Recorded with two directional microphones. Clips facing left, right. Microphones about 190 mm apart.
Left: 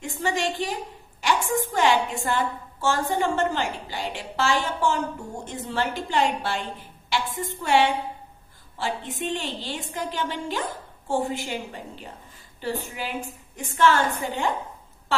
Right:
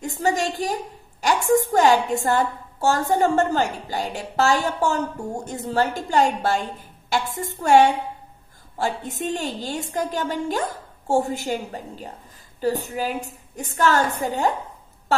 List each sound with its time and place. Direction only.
0.0 s a woman's voice: 40° right (ahead or behind)